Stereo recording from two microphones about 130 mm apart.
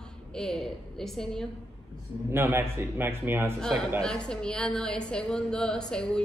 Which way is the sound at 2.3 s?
20° right (ahead or behind).